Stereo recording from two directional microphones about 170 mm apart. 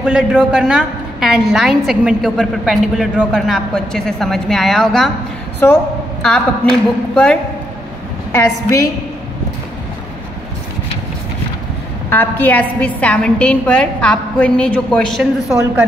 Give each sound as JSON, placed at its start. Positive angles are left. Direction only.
{"t": 0.0, "sound": "a woman's voice", "side_deg": -5}
{"t": 8.3, "sound": "a woman's voice", "side_deg": 15}
{"t": 12.1, "sound": "a woman's voice", "side_deg": 10}